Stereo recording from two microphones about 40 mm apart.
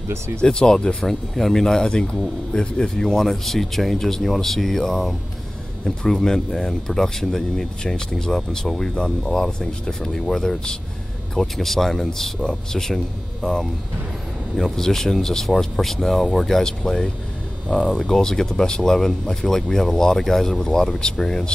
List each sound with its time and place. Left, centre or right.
0.4 s speech: left
3.2 s speech: centre